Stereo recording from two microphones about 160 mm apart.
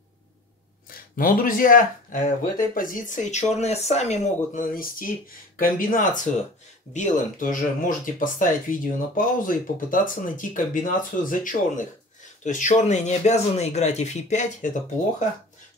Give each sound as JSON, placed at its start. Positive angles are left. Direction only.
{"t": 0.8, "sound": "speech", "side_deg": 60}
{"t": 4.7, "sound": "speech", "side_deg": 60}